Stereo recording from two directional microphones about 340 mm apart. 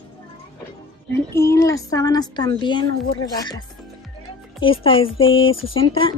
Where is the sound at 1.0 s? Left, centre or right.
Centre.